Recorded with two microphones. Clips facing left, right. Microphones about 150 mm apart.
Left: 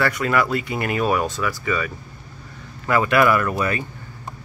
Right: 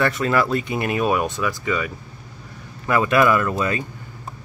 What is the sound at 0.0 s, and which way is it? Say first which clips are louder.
Speech: right 1 dB; 25° right (ahead or behind).